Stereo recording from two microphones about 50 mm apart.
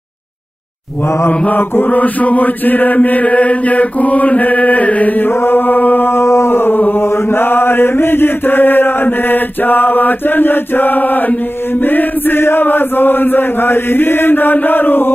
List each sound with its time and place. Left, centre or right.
1.5 s chant: left
5.3 s chant: left